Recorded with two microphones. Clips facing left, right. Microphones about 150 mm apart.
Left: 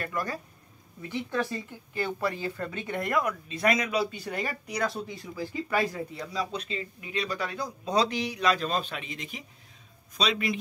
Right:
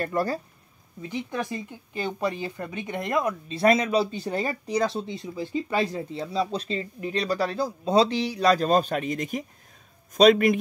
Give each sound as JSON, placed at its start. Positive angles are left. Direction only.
{"t": 0.0, "sound": "speech", "side_deg": -30}
{"t": 1.0, "sound": "a man's voice", "side_deg": -15}